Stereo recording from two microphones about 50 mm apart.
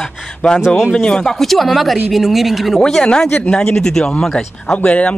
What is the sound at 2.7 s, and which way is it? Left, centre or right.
Speech, centre.